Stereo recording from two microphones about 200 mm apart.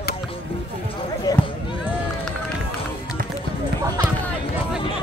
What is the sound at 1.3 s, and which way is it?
Basketball bounce, 20° left (ahead or behind).